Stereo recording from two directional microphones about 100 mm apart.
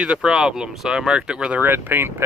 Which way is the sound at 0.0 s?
10° right (ahead or behind).